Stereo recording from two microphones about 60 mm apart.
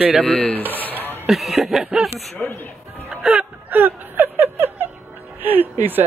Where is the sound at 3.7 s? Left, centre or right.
Right.